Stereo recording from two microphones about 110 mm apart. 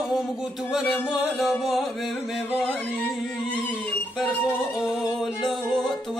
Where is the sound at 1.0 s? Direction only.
5° right (ahead or behind).